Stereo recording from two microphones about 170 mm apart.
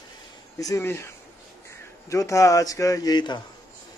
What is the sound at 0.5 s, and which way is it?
A man's voice, 20° left (ahead or behind).